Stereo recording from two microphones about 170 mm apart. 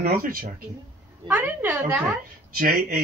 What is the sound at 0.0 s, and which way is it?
Speech, 60° right (ahead or behind).